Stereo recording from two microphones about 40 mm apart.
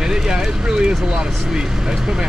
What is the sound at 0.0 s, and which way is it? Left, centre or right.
Speech, centre.